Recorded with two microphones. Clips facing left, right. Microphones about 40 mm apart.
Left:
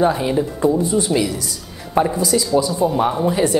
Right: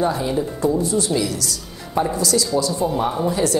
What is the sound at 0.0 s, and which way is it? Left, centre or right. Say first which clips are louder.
A woman's voice: left 3 dB; left.